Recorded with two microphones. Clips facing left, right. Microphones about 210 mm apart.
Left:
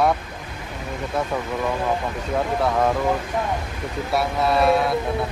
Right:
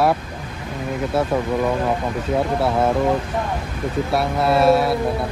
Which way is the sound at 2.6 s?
5° right (ahead or behind).